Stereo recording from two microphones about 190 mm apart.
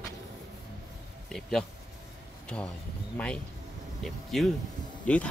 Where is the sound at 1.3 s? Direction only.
Centre (ahead or behind).